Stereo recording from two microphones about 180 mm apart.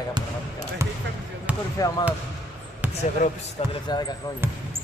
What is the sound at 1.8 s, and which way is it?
Speech, 20° left (ahead or behind).